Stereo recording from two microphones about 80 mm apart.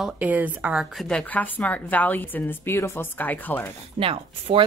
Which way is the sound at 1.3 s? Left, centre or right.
Centre.